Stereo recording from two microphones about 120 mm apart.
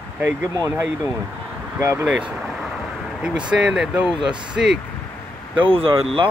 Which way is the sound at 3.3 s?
5° right (ahead or behind).